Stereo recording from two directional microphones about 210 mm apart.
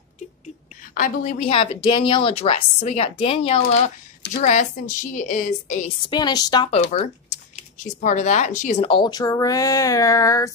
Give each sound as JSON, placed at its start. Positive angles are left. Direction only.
{"t": 0.9, "sound": "speech", "side_deg": 40}
{"t": 6.0, "sound": "speech", "side_deg": 20}
{"t": 6.7, "sound": "a woman's voice", "side_deg": 30}